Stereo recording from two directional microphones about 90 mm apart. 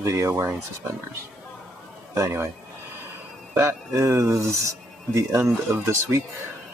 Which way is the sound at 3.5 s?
30° right (ahead or behind).